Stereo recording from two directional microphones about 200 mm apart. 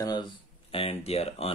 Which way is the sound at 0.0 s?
20° left (ahead or behind).